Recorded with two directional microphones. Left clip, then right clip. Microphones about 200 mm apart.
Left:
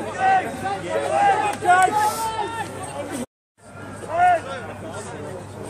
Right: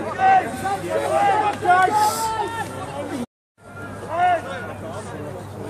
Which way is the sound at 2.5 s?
45° left (ahead or behind).